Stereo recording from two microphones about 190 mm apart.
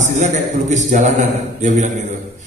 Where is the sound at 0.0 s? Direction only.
40° right (ahead or behind).